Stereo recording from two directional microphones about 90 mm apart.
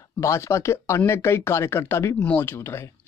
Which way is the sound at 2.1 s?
15° left (ahead or behind).